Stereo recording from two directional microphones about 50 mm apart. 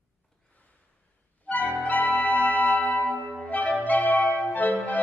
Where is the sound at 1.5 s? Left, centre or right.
Left.